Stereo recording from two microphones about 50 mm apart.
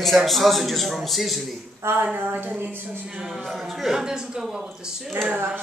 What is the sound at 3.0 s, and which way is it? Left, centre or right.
Speech, right.